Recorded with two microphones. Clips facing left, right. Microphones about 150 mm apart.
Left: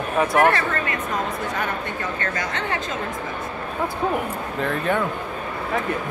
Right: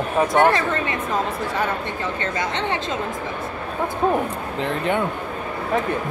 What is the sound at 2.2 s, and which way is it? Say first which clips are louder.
Speech: right 4 dB; 25° right (ahead or behind).